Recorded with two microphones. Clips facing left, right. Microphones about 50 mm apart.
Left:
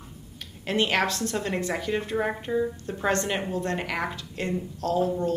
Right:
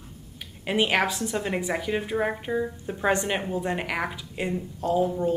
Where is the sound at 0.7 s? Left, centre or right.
Centre.